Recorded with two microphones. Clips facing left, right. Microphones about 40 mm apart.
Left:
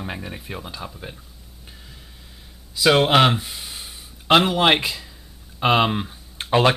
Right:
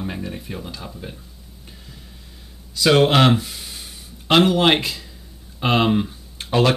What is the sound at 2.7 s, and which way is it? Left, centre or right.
Speech, centre.